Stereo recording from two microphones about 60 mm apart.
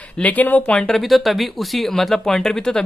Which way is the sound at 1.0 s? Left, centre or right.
Centre.